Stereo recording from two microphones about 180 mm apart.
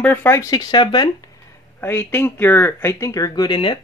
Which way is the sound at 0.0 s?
10° left (ahead or behind).